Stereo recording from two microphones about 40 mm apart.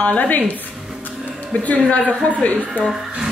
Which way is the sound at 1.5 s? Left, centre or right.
Left.